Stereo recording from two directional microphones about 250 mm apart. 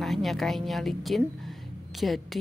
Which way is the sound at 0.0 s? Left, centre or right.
Centre.